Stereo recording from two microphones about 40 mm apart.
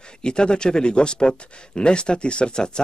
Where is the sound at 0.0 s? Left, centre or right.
Left.